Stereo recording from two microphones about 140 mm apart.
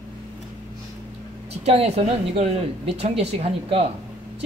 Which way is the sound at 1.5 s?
50° right (ahead or behind).